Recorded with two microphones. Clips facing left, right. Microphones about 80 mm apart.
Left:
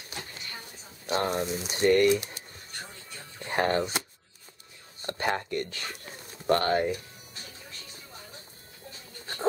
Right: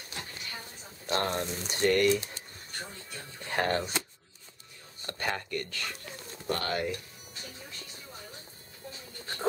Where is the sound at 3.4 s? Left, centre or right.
Centre.